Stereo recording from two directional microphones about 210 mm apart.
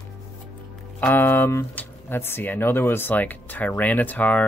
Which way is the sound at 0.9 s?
10° left (ahead or behind).